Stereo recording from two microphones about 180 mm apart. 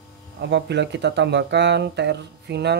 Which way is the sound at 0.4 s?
75° right (ahead or behind).